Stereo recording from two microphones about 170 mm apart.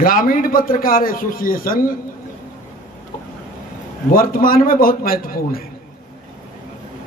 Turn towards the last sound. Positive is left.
turn(degrees=60)  # may be behind; listen again after turning